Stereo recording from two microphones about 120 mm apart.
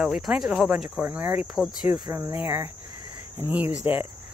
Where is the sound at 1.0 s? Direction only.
15° right (ahead or behind).